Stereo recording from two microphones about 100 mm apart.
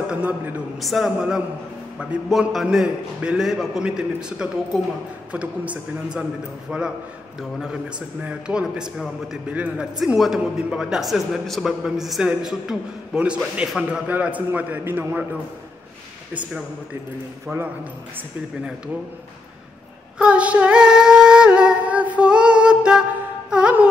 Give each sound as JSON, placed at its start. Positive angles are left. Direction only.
{"t": 0.1, "sound": "a man's voice", "side_deg": -15}
{"t": 0.7, "sound": "a man's voice", "side_deg": 0}
{"t": 9.5, "sound": "a man's voice", "side_deg": -15}
{"t": 9.9, "sound": "a man's voice", "side_deg": 0}
{"t": 17.5, "sound": "a man's voice", "side_deg": -20}
{"t": 20.2, "sound": "female singing", "side_deg": -10}
{"t": 23.5, "sound": "music", "side_deg": -15}